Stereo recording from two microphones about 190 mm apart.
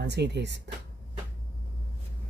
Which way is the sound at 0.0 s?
65° right (ahead or behind).